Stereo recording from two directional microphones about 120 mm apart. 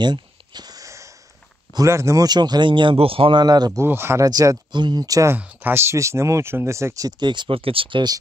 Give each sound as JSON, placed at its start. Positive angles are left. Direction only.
{"t": 0.0, "sound": "a sound", "side_deg": -35}
{"t": 1.7, "sound": "a man's voice", "side_deg": -25}
{"t": 3.8, "sound": "speech", "side_deg": -20}
{"t": 4.3, "sound": "a man's voice", "side_deg": -30}